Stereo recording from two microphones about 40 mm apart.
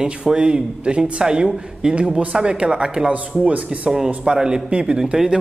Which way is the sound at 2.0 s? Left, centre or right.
Right.